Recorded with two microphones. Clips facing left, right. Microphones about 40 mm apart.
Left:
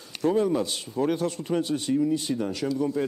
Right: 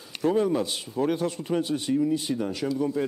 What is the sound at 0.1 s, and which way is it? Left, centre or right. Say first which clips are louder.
A man's voice: even; centre.